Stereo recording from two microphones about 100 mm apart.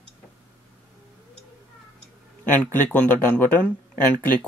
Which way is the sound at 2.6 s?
15° left (ahead or behind).